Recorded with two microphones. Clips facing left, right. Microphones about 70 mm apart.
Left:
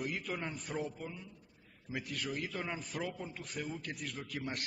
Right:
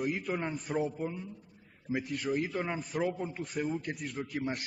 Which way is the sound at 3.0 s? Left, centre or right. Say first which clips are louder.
Right 8 dB; centre.